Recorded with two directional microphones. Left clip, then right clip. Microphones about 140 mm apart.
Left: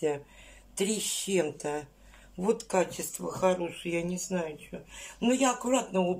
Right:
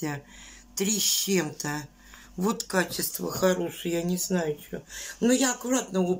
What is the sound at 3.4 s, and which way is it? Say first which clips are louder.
Speech: right 2 dB; centre (ahead or behind).